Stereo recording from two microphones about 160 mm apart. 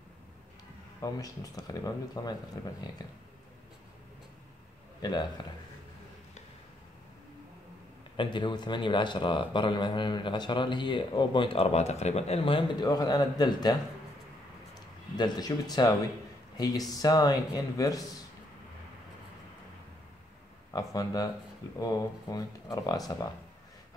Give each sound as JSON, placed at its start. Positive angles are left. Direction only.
{"t": 1.0, "sound": "speech", "side_deg": 20}
{"t": 8.2, "sound": "speech", "side_deg": 30}
{"t": 14.7, "sound": "a sound", "side_deg": 25}
{"t": 16.5, "sound": "speech", "side_deg": 25}
{"t": 20.7, "sound": "speech", "side_deg": 25}